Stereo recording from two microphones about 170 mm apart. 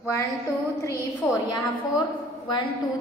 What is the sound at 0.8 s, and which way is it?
Speech, 15° left (ahead or behind).